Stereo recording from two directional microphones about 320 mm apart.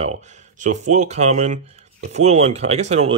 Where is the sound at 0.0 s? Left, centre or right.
Right.